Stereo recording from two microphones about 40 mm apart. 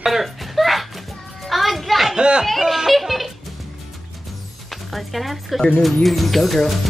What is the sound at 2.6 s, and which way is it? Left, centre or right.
Speech, centre.